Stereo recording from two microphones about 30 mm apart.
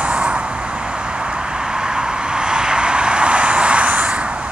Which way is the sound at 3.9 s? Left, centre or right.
Right.